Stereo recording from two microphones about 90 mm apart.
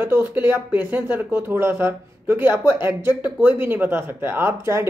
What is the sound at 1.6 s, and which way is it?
Speech, 30° right (ahead or behind).